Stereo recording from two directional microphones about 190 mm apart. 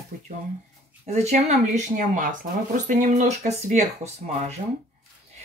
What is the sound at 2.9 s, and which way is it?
Speech, 40° right (ahead or behind).